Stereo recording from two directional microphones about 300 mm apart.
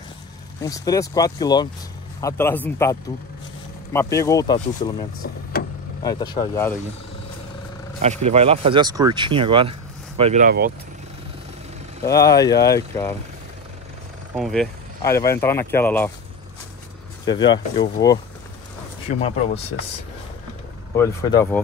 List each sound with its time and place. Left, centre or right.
0.6 s speech: centre
5.2 s a sound: left
6.0 s speech: centre
8.0 s speech: right
12.0 s speech: centre
14.3 s speech: centre
17.2 s speech: centre
20.9 s speech: centre